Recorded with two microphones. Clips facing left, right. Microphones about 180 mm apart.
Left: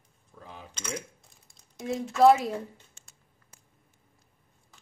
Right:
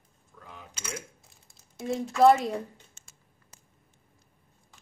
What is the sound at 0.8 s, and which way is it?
Coin, 10° right (ahead or behind).